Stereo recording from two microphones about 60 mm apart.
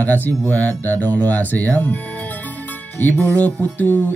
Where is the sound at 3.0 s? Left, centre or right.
Left.